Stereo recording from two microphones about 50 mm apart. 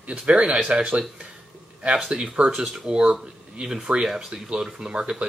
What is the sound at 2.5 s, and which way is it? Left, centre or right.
Speech, centre.